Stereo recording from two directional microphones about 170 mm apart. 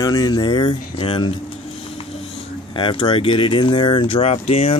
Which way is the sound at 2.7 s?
30° left (ahead or behind).